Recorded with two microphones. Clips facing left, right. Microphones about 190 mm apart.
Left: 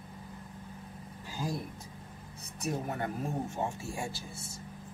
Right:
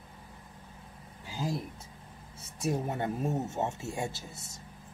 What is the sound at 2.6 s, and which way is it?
Speech, 25° right (ahead or behind).